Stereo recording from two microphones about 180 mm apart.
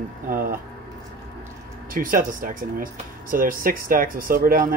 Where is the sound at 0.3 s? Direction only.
55° right (ahead or behind).